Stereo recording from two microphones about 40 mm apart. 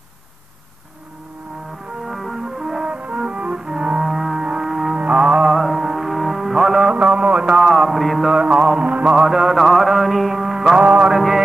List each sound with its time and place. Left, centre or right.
2.0 s music: centre
2.9 s music: right
4.0 s a sound: centre
4.4 s music: centre
4.9 s music: right
5.5 s mantra: centre
6.0 s music: centre
6.9 s a sound: right
7.5 s mantra: centre
8.3 s mantra: right
9.1 s mantra: centre
10.8 s music: right
11.1 s music: centre